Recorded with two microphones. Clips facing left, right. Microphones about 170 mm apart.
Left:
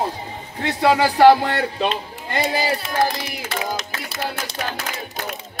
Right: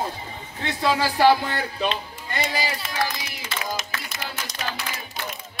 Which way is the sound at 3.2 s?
60° left (ahead or behind).